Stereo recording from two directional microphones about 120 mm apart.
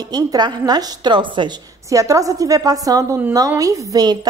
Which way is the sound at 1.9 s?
25° right (ahead or behind).